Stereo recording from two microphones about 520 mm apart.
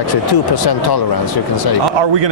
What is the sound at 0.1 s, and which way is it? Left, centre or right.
Speech, left.